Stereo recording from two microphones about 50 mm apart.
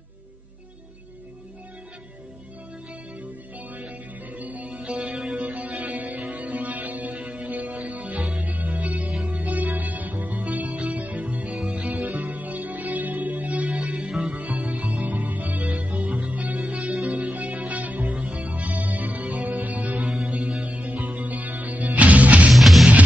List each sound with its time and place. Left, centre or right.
4.4 s music: right
4.8 s music: centre
5.4 s music: right
11.6 s music: centre
11.9 s music: right
14.0 s music: centre
14.3 s music: right
20.1 s music: centre
20.5 s music: right
22.5 s music: centre